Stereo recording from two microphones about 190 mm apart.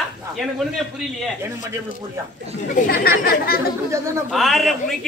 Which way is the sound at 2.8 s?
55° left (ahead or behind).